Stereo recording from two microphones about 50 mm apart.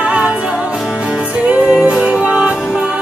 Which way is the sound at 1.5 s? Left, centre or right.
Centre.